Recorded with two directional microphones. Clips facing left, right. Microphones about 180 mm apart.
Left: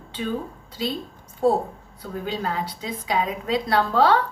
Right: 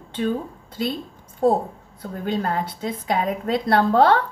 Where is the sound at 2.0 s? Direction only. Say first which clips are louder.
Right 3 dB; 50° right (ahead or behind).